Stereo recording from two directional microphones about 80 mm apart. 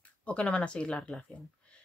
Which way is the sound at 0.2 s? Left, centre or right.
Centre.